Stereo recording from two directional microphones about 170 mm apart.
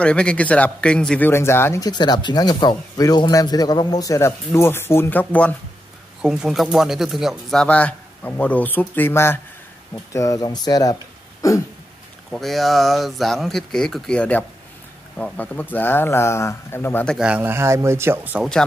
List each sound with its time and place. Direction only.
0.0 s speech: 5° left (ahead or behind)
6.2 s speech: 5° right (ahead or behind); by 11.6 s 20° left (ahead or behind)
12.3 s speech: centre (ahead or behind)
17.2 s speech: 10° right (ahead or behind)